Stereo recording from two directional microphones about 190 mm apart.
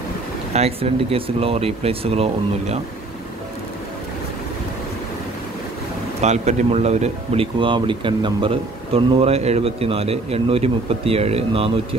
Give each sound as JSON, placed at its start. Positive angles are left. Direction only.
{"t": 0.5, "sound": "speech", "side_deg": -35}
{"t": 6.2, "sound": "speech", "side_deg": -35}